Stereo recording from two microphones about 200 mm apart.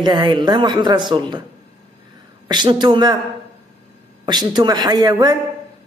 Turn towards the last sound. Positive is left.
turn(degrees=-20)  # may be behind; listen again after turning